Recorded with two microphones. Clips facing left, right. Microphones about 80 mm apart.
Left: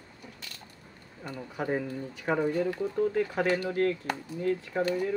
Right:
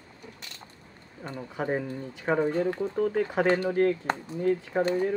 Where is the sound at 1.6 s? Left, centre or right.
Right.